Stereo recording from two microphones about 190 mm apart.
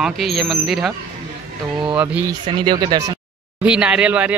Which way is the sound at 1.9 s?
10° right (ahead or behind).